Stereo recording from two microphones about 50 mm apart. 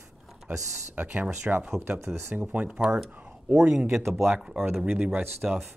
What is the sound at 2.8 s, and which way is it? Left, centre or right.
Speech, centre.